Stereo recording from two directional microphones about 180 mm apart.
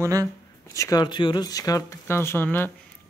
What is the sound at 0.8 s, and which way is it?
Speech, 20° left (ahead or behind).